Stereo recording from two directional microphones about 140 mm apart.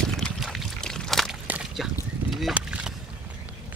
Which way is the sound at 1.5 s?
5° right (ahead or behind).